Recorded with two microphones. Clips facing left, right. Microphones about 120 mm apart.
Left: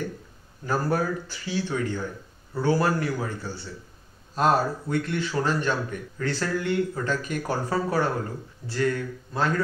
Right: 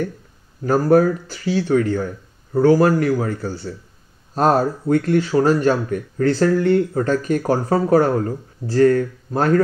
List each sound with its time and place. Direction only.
0.7 s a man's voice: 45° right (ahead or behind)
1.2 s a man's voice: 35° right (ahead or behind)